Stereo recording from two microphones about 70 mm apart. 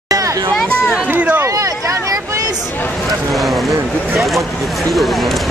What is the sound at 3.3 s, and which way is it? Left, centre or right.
Speech, centre.